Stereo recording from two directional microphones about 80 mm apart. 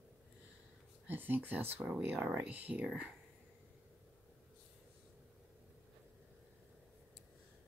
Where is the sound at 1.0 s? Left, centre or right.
Right.